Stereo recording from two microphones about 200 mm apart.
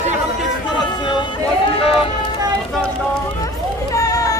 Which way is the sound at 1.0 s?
25° left (ahead or behind).